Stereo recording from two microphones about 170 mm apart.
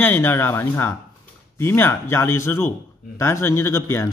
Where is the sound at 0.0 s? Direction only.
10° left (ahead or behind).